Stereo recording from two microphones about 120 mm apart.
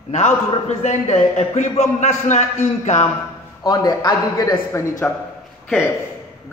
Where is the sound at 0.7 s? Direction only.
70° left (ahead or behind).